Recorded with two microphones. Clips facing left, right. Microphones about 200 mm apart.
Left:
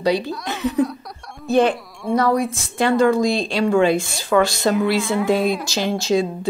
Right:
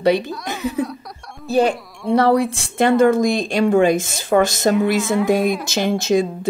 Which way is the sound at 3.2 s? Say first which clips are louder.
Right 2 dB; 50° right (ahead or behind).